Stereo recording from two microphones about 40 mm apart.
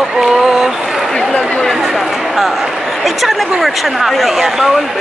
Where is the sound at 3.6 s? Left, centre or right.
Centre.